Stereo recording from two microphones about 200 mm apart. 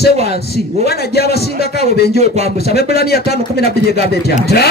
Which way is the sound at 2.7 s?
50° left (ahead or behind).